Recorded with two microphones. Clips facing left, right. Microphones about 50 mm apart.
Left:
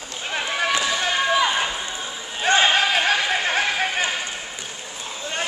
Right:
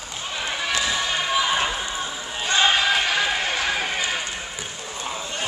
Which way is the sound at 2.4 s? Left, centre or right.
Left.